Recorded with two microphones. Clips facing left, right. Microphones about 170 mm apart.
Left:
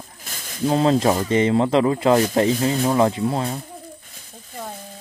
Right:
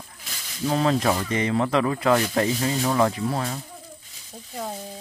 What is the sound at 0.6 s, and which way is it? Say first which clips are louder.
Speech: left 4 dB; 30° left (ahead or behind).